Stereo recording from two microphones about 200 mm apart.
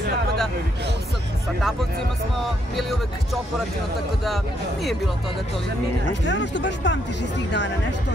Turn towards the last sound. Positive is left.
turn(degrees=65)  # may be behind; listen again after turning